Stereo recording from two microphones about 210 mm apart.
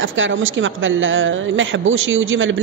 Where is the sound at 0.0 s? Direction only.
65° right (ahead or behind).